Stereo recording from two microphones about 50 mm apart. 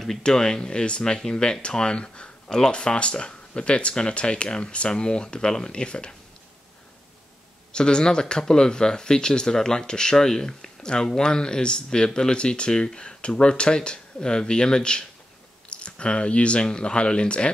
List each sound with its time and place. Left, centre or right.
0.2 s speech: centre
7.7 s speech: centre